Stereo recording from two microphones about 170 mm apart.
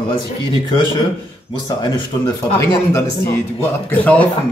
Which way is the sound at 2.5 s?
15° left (ahead or behind).